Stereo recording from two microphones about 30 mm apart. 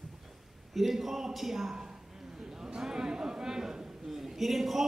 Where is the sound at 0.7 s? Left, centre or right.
Centre.